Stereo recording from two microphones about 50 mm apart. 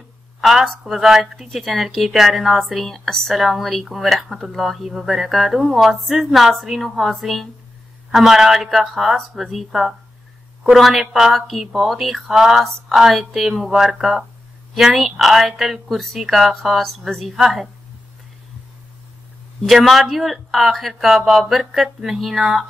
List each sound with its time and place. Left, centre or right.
0.4 s a woman's voice: centre
3.3 s speech: centre
19.7 s speech: centre